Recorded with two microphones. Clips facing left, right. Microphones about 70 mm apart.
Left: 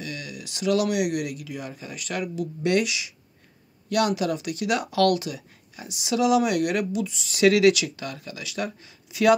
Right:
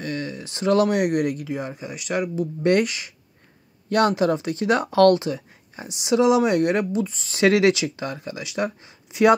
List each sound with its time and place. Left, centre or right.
0.0 s speech: right
2.6 s speech: right